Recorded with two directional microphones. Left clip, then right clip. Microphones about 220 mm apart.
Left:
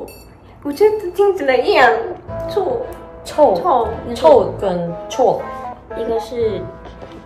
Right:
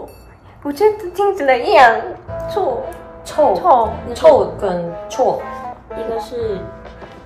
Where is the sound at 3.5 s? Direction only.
15° right (ahead or behind).